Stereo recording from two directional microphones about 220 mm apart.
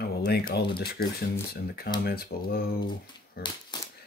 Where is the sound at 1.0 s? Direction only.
45° left (ahead or behind).